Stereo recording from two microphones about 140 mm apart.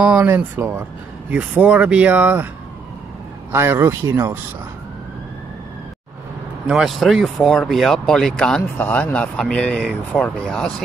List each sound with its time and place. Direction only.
0.0 s speech: 5° right (ahead or behind)
0.3 s speech: 15° right (ahead or behind)
3.5 s speech: 20° right (ahead or behind)
6.7 s speech: centre (ahead or behind)